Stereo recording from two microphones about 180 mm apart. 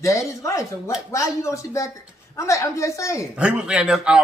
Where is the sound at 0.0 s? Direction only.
15° left (ahead or behind).